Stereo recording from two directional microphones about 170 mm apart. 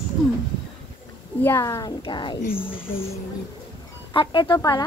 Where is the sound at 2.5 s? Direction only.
10° left (ahead or behind).